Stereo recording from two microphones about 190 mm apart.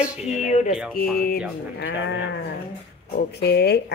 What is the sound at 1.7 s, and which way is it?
Speech, 75° left (ahead or behind).